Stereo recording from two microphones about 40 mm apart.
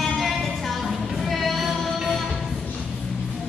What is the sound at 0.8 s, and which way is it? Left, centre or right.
Music, centre.